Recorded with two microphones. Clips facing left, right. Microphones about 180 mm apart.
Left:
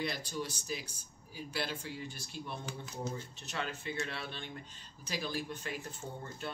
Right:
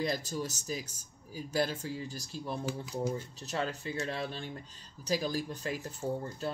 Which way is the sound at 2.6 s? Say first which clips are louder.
Right 9 dB; 10° right (ahead or behind).